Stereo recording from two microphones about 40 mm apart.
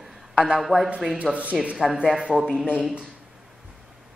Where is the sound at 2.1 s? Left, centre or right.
Centre.